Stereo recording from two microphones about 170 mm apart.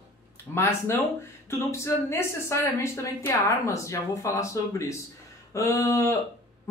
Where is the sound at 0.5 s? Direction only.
15° left (ahead or behind).